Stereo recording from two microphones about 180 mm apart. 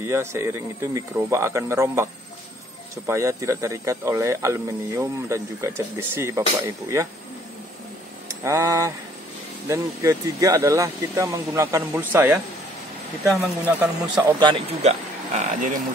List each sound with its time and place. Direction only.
0.0 s speech: 15° right (ahead or behind)
3.1 s speech: 15° right (ahead or behind)
8.5 s speech: 15° right (ahead or behind)
13.4 s speech: 10° right (ahead or behind)
14.1 s a man's voice: 25° right (ahead or behind)
14.8 s speech: 40° right (ahead or behind)